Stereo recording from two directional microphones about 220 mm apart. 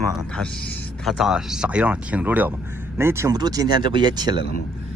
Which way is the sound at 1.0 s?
Centre (ahead or behind).